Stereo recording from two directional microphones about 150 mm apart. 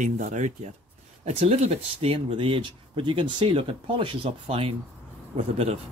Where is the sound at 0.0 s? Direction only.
55° right (ahead or behind).